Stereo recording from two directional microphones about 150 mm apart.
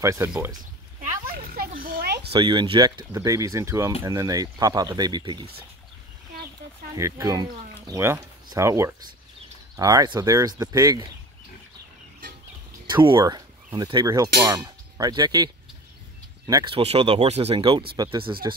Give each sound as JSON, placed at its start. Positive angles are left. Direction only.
{"t": 0.0, "sound": "speech", "side_deg": -20}
{"t": 1.3, "sound": "a sound", "side_deg": -80}
{"t": 2.3, "sound": "speech", "side_deg": -35}
{"t": 7.0, "sound": "speech", "side_deg": -20}
{"t": 12.9, "sound": "speech", "side_deg": -30}
{"t": 14.4, "sound": "clang", "side_deg": -30}
{"t": 16.6, "sound": "speech", "side_deg": -40}